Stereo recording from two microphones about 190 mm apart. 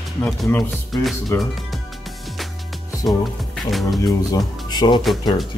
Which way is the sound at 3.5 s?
Centre (ahead or behind).